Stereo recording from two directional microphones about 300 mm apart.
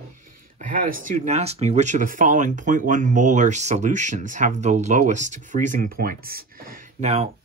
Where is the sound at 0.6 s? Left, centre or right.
Right.